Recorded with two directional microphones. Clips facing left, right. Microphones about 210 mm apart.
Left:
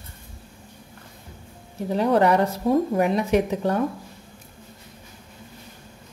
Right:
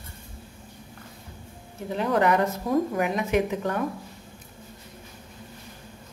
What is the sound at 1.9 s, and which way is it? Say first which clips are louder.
Speech: left 4 dB; 35° left (ahead or behind).